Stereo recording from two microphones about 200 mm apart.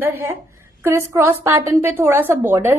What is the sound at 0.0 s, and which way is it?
Speech, 10° right (ahead or behind).